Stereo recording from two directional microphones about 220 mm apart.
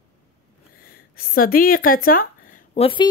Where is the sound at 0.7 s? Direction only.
40° left (ahead or behind).